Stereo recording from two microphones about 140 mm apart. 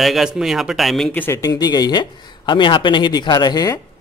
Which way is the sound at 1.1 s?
15° left (ahead or behind).